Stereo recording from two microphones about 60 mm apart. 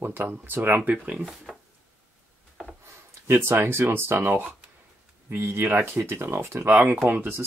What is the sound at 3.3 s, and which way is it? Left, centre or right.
Speech, right.